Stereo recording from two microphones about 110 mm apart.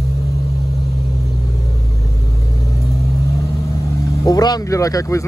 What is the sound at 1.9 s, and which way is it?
Vehicle, 30° left (ahead or behind).